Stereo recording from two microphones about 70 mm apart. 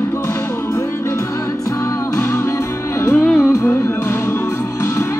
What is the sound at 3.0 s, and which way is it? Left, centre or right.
Music, left.